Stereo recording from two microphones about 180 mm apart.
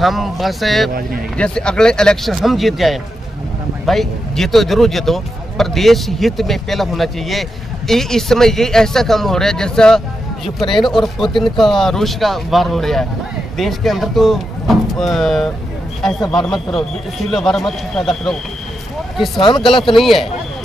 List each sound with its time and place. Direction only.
0.0 s speech: centre (ahead or behind)
19.3 s speech: 30° left (ahead or behind)
19.6 s speech: centre (ahead or behind)